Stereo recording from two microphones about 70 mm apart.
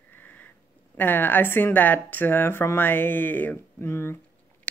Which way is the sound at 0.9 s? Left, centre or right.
Left.